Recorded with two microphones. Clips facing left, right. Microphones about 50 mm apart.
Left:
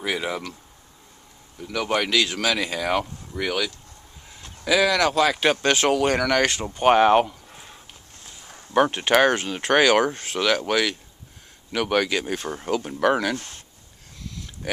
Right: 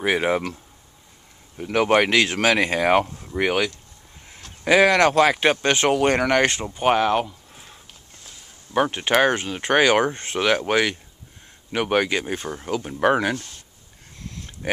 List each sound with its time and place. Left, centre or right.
0.0 s speech: right
1.6 s speech: right
5.3 s speech: right
6.6 s speech: centre
7.0 s speech: centre
8.7 s speech: centre
10.1 s speech: right
12.4 s speech: centre
13.0 s speech: centre
14.2 s a sound: right